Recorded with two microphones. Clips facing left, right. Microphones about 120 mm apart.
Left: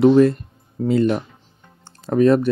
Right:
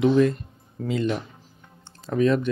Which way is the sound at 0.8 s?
45° left (ahead or behind).